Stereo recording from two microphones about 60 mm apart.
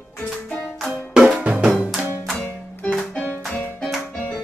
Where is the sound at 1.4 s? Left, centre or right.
Centre.